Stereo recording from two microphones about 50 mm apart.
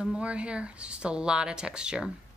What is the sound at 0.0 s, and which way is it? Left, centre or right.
Speech, centre.